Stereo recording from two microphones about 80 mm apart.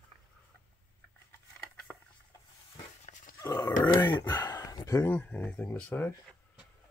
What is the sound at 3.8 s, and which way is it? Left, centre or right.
Speech, left.